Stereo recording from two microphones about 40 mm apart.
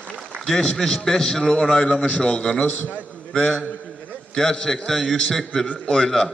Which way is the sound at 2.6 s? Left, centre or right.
Left.